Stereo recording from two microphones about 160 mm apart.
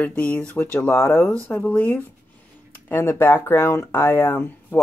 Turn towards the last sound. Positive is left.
turn(degrees=15)  # may be behind; listen again after turning